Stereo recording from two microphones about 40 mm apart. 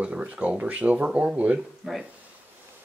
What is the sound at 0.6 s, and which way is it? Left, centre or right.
Speech, right.